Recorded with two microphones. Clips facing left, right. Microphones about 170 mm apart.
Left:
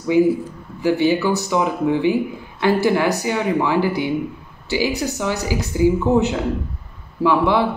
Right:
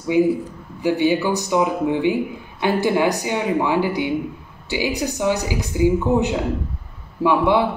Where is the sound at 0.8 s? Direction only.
15° right (ahead or behind).